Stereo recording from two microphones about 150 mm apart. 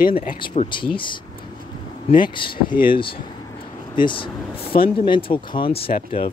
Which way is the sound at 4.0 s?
35° left (ahead or behind).